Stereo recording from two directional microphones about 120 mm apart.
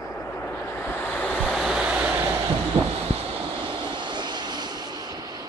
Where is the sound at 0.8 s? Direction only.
10° left (ahead or behind).